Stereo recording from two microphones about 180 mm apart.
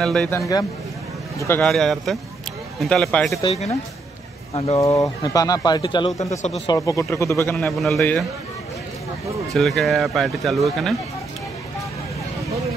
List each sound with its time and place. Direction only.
0.0 s speech: 5° left (ahead or behind)
1.6 s speech: centre (ahead or behind)
3.4 s speech: 35° left (ahead or behind)
4.7 s speech: 20° left (ahead or behind)
6.3 s speech: 40° left (ahead or behind)
6.7 s speech: 15° left (ahead or behind)
7.5 s speech: centre (ahead or behind)
9.5 s speech: centre (ahead or behind)